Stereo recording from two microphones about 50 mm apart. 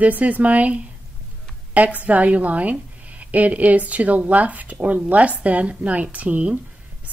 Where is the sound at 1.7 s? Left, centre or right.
Right.